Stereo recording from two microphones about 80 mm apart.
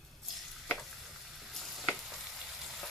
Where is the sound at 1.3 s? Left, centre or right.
Centre.